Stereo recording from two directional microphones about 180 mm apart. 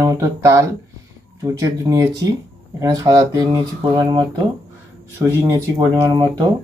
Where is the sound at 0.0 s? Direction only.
15° right (ahead or behind).